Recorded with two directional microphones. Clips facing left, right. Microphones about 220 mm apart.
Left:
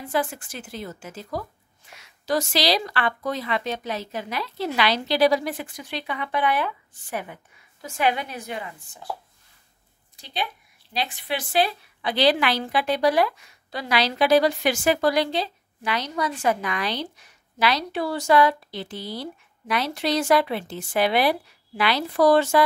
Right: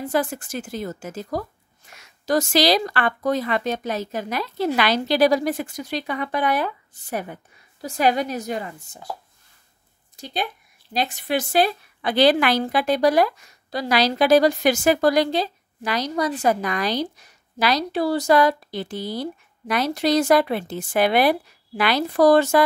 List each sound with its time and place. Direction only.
0.1 s a woman's voice: 45° right (ahead or behind)
10.1 s a woman's voice: 45° right (ahead or behind)